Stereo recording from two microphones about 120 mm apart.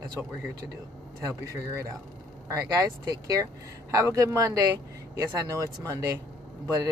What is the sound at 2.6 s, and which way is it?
Speech, 30° right (ahead or behind).